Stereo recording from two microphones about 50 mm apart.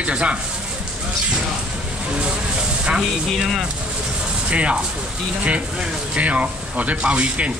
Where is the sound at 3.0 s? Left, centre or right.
Centre.